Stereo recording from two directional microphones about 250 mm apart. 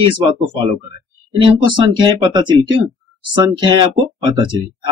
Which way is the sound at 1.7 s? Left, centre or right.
Centre.